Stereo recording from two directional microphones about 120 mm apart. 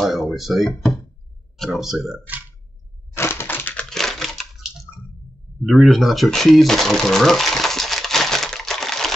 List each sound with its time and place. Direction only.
0.0 s speech: centre (ahead or behind)
3.2 s crushing: 20° left (ahead or behind)
3.9 s a sound: 5° left (ahead or behind)
5.6 s cash register: centre (ahead or behind)